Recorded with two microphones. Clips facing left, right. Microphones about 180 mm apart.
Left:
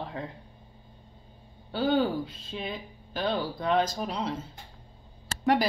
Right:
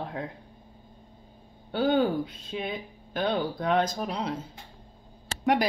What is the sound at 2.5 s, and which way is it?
Speech, centre (ahead or behind).